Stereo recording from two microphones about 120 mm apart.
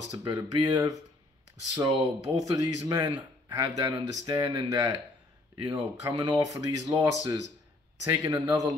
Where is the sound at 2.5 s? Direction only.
30° right (ahead or behind).